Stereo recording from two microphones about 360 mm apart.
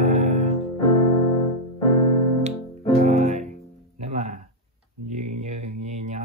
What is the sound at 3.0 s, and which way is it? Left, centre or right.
Music, centre.